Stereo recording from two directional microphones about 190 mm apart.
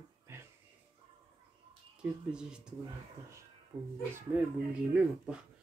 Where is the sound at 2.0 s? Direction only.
5° right (ahead or behind).